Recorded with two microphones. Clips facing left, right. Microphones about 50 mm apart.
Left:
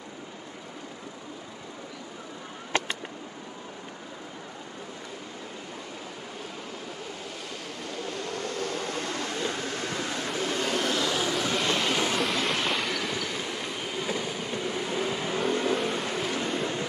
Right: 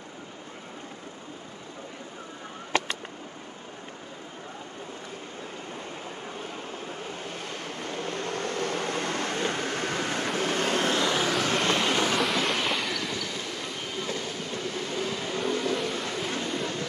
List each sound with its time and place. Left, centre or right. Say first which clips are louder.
7.8 s vehicle: right 2 dB; right
12.2 s train: right 1 dB; centre
14.0 s vehicle: left 2 dB; centre